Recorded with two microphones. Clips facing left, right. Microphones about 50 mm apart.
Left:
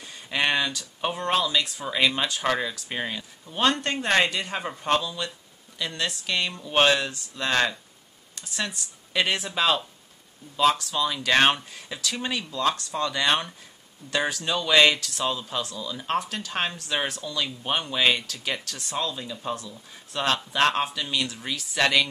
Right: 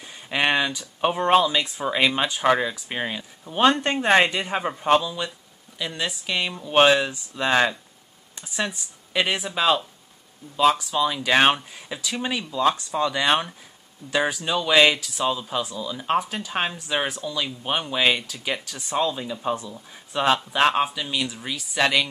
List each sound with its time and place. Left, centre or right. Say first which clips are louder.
0.0 s speech: right 2 dB; centre